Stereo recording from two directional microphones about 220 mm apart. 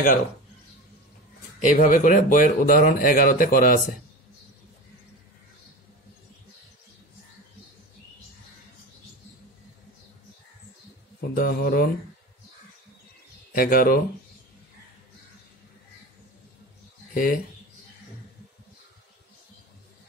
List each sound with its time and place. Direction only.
1.6 s speech: 35° left (ahead or behind)
11.3 s speech: 40° left (ahead or behind)
13.6 s speech: 40° left (ahead or behind)
17.1 s speech: 40° left (ahead or behind)